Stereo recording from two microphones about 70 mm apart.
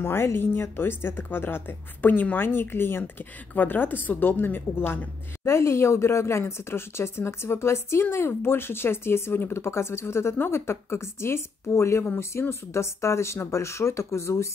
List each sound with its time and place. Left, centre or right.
0.0 s speech: left